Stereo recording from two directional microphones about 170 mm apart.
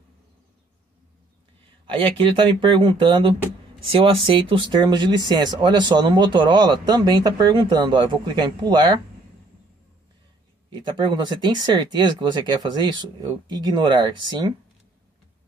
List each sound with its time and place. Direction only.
1.9 s speech: 35° right (ahead or behind)
10.7 s speech: 25° right (ahead or behind)